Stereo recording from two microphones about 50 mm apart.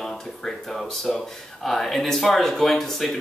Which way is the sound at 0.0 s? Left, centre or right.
Centre.